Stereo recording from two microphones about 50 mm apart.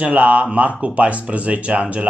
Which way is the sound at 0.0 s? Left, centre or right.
Right.